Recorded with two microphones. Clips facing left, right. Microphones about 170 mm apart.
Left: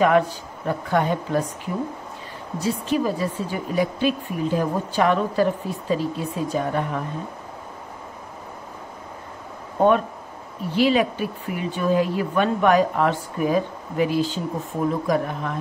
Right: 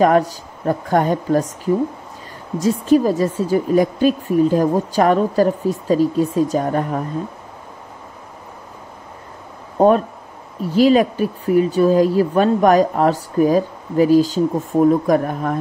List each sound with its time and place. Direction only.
0.0 s speech: 40° right (ahead or behind)
9.8 s speech: 35° right (ahead or behind)